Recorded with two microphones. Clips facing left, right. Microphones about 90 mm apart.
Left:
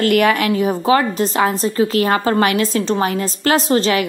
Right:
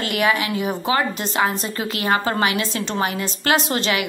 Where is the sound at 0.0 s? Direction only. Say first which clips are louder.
Left 6 dB; 50° left (ahead or behind).